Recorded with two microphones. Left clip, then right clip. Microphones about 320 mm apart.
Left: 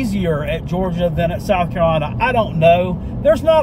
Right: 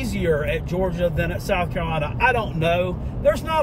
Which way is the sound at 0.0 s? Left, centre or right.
Centre.